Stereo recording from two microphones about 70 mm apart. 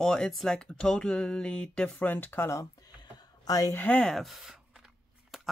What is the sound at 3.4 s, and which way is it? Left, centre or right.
Speech, left.